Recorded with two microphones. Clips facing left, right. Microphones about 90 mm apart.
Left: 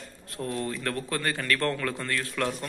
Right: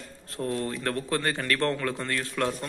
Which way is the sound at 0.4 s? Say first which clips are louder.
Right 2 dB; 30° right (ahead or behind).